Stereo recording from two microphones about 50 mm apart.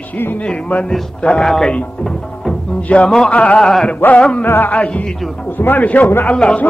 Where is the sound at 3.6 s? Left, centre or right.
Centre.